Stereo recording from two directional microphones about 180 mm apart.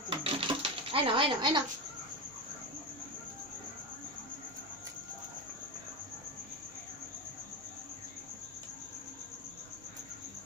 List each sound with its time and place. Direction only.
0.1 s typewriter: 30° right (ahead or behind)